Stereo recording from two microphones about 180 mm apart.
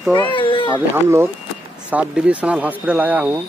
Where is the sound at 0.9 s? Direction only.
15° right (ahead or behind).